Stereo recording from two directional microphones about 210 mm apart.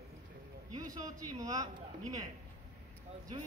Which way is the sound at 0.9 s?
15° right (ahead or behind).